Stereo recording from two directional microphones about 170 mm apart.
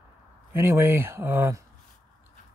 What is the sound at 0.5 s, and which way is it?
Speech, 15° right (ahead or behind).